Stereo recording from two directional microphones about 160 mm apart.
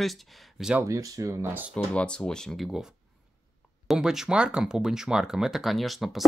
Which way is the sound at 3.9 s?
Centre (ahead or behind).